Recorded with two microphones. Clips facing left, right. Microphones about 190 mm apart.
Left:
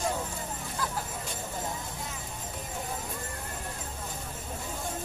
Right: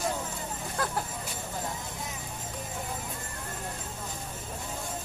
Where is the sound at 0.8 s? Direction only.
60° right (ahead or behind).